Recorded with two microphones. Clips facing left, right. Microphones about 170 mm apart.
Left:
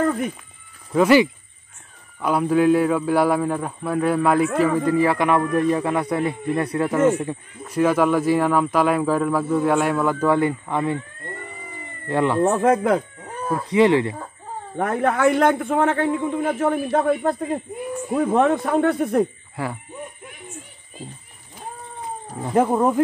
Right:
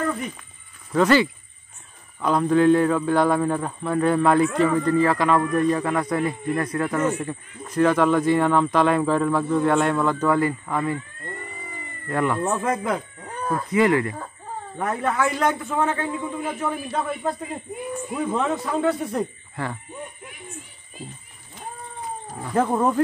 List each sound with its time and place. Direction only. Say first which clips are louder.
0.0 s a sound: left 5 dB; 50° left (ahead or behind)
0.9 s speech: left 3 dB; 10° left (ahead or behind)
10.3 s speech: left 2 dB; 20° left (ahead or behind)
12.1 s speech: left 3 dB; 20° left (ahead or behind)
12.4 s a man's voice: left 6 dB; 60° left (ahead or behind)
13.3 s a sound: left 1 dB; 5° left (ahead or behind)
13.7 s speech: left 3 dB; 20° left (ahead or behind)
14.8 s a man's voice: left 4 dB; 55° left (ahead or behind)
19.5 s speech: left 2 dB; 10° left (ahead or behind)
22.6 s speech: left 3 dB; 10° left (ahead or behind)